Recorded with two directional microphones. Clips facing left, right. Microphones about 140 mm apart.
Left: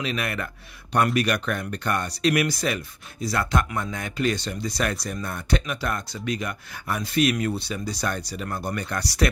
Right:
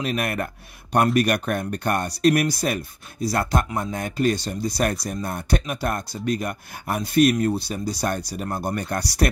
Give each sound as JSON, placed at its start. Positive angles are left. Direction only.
{"t": 0.0, "sound": "speech", "side_deg": -50}